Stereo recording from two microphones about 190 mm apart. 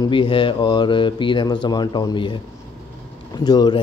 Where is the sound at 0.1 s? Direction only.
25° left (ahead or behind).